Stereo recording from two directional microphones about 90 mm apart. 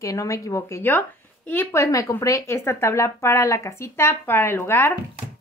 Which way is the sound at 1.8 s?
40° left (ahead or behind).